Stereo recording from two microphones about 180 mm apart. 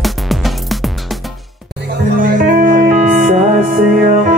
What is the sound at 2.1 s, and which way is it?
Music, 50° right (ahead or behind).